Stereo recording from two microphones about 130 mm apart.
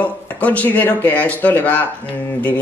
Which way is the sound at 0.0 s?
10° left (ahead or behind).